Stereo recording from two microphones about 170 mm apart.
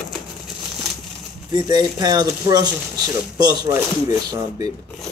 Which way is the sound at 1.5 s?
25° right (ahead or behind).